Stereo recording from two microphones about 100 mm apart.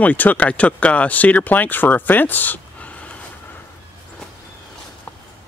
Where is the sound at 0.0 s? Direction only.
15° left (ahead or behind).